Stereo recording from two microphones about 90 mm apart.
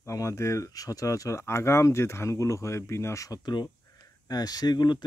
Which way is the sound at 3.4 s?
50° left (ahead or behind).